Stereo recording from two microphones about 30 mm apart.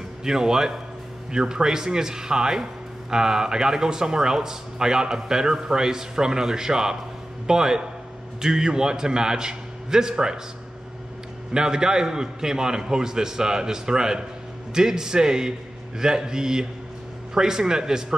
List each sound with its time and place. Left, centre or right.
0.2 s speech: centre
11.5 s speech: right